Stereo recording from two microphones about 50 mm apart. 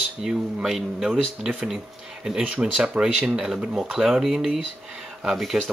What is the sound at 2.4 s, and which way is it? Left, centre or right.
Speech, right.